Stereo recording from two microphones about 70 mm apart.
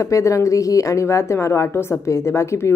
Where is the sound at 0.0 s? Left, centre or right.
Left.